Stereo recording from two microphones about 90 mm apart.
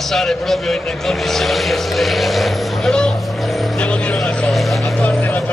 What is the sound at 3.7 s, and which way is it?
Vehicle, 10° left (ahead or behind).